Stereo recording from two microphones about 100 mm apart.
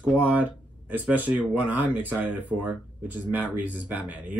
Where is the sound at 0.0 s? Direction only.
15° right (ahead or behind).